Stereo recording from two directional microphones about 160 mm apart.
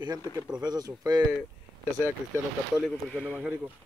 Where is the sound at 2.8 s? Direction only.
5° left (ahead or behind).